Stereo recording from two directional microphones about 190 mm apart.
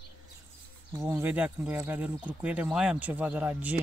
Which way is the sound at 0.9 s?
15° right (ahead or behind).